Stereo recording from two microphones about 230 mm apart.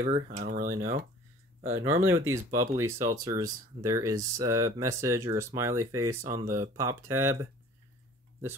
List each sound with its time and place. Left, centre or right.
0.0 s speech: right
0.7 s speech: right
1.6 s speech: centre